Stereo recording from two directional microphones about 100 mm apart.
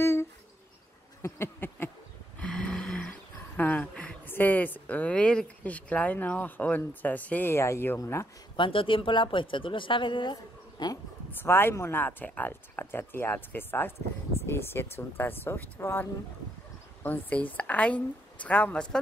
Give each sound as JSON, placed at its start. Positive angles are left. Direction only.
{"t": 0.0, "sound": "a sound", "side_deg": 25}
{"t": 1.2, "sound": "speech", "side_deg": 25}
{"t": 2.4, "sound": "a sound", "side_deg": 10}
{"t": 4.3, "sound": "speech", "side_deg": 20}
{"t": 8.5, "sound": "speech", "side_deg": 60}
{"t": 11.3, "sound": "speech", "side_deg": 20}